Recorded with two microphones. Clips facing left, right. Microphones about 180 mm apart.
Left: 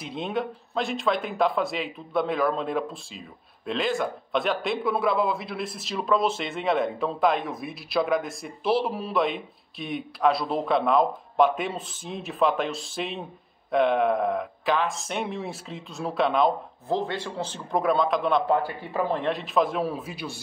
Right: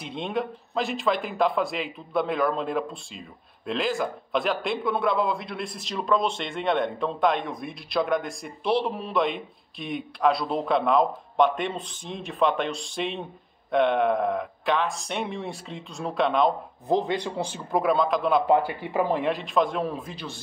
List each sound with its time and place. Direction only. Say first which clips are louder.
0.0 s a man's voice: even; centre (ahead or behind)
16.8 s a man's voice: right 3 dB; 15° right (ahead or behind); by 18.4 s centre (ahead or behind)
18.5 s speech: right 3 dB; 15° right (ahead or behind)
19.2 s a man's voice: even; centre (ahead or behind)